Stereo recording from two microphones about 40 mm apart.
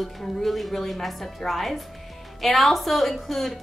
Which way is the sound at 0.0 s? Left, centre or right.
Centre.